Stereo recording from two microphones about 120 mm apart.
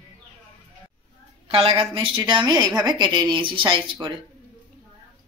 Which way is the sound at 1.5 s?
55° right (ahead or behind).